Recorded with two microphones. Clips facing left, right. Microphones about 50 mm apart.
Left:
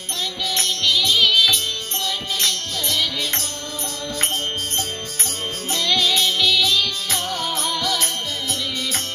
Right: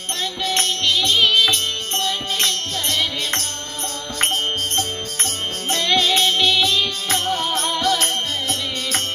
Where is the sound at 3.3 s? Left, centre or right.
Right.